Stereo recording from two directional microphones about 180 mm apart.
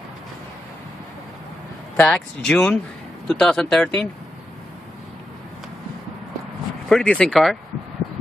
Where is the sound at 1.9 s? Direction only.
5° left (ahead or behind).